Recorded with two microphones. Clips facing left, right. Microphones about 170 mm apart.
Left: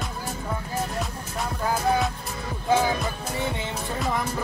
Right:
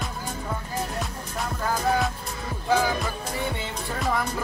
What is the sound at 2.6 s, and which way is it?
Speech, 25° left (ahead or behind).